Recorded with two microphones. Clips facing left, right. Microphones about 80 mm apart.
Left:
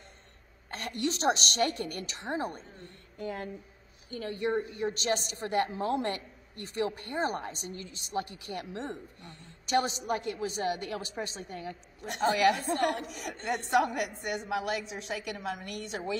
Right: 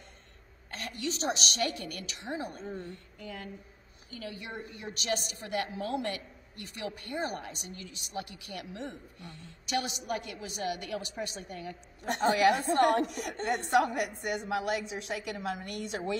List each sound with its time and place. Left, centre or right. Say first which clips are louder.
0.7 s a woman's voice: left 4 dB; left
12.2 s a woman's voice: even; centre